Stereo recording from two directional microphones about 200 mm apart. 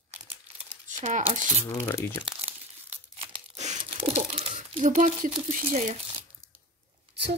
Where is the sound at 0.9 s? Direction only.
40° right (ahead or behind).